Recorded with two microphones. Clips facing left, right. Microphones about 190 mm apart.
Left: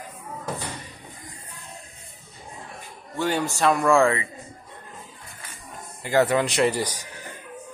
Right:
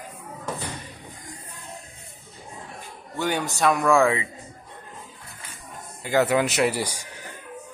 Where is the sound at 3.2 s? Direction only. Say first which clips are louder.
Left 1 dB; centre (ahead or behind).